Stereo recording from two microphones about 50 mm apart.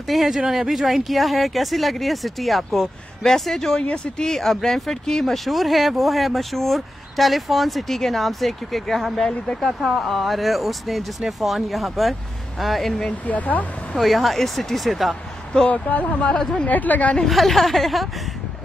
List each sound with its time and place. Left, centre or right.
0.1 s speech: centre
3.8 s speech: left
4.3 s speech: centre
13.3 s a woman's voice: left
13.9 s speech: centre
15.6 s speech: left
16.6 s a woman's voice: left
17.2 s speech: centre